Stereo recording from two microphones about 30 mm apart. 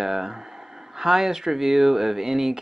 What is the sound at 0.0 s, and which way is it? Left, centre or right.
Speech, centre.